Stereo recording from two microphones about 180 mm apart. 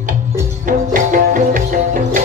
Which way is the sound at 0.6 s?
45° right (ahead or behind).